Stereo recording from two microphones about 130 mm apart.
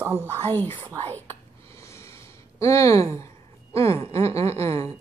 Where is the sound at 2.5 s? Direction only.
25° left (ahead or behind).